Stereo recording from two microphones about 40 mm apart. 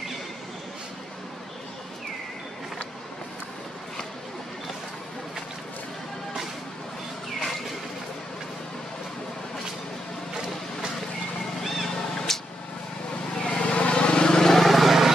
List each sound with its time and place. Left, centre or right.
11.6 s a sound: centre
12.3 s vehicle: centre
13.4 s vehicle: left; by 15.1 s centre